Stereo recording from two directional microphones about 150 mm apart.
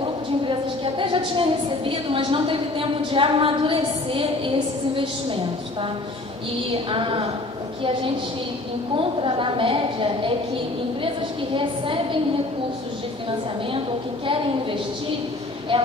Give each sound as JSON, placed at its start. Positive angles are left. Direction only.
{"t": 0.0, "sound": "a woman's voice", "side_deg": -35}
{"t": 6.9, "sound": "a woman's voice", "side_deg": -35}
{"t": 8.9, "sound": "a woman's voice", "side_deg": -35}
{"t": 11.5, "sound": "a woman's voice", "side_deg": -35}
{"t": 15.7, "sound": "a woman's voice", "side_deg": -35}